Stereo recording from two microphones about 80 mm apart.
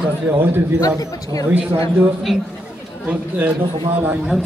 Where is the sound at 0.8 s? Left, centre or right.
Left.